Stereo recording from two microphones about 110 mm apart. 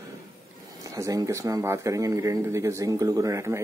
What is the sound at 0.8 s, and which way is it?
Speech, 30° right (ahead or behind).